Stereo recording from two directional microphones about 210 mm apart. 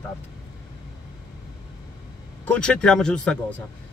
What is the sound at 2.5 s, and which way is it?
Speech, 5° left (ahead or behind).